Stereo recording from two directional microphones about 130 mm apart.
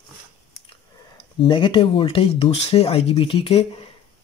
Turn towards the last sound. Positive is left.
turn(degrees=45)  # may be behind; listen again after turning